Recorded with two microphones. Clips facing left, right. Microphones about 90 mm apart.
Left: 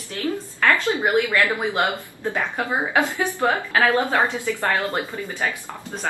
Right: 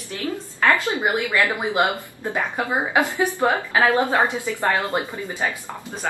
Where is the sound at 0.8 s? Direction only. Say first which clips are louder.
Left 2 dB; 20° right (ahead or behind).